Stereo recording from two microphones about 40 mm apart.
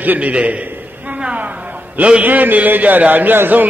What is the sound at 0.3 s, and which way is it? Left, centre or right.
Speech, right.